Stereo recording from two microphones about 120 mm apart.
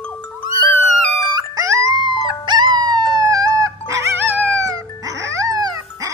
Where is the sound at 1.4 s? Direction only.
30° right (ahead or behind).